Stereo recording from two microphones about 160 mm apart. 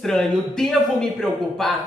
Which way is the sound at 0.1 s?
5° left (ahead or behind).